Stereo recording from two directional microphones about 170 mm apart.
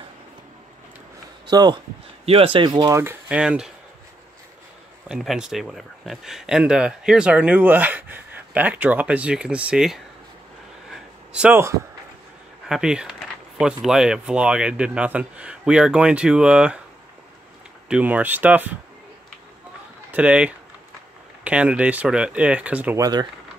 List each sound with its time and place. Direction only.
1.5 s speech: 25° right (ahead or behind)
2.2 s speech: 35° right (ahead or behind); by 3.7 s 5° right (ahead or behind)
5.0 s speech: 5° right (ahead or behind)
10.9 s a sound: 5° right (ahead or behind)
12.6 s speech: 5° right (ahead or behind)
17.8 s speech: 5° right (ahead or behind)
20.1 s speech: 5° right (ahead or behind)